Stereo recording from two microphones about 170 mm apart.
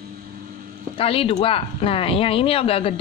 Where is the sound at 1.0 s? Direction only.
35° left (ahead or behind).